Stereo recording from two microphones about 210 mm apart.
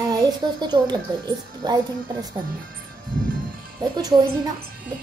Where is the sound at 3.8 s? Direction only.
20° right (ahead or behind).